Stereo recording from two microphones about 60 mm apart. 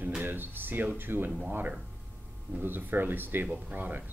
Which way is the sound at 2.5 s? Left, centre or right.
Right.